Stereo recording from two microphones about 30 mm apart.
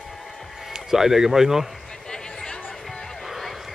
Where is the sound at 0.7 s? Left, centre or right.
Centre.